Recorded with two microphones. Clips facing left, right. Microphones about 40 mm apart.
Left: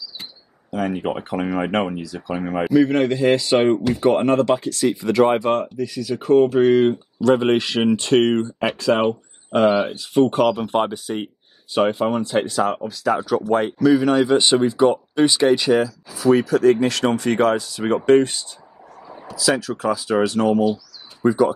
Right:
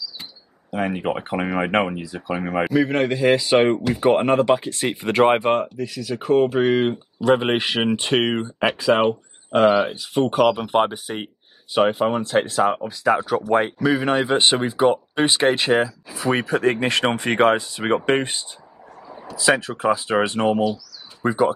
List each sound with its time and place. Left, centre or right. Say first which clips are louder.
0.7 s speech: even; right
2.7 s speech: left 5 dB; centre
4.0 s speech: right 1 dB; right
4.8 s speech: left 1 dB; right
5.6 s speech: left 1 dB; centre
10.5 s speech: right 1 dB; right
11.7 s speech: even; centre
12.8 s speech: right 1 dB; right
19.0 s a sound: even; centre
19.3 s speech: right 1 dB; right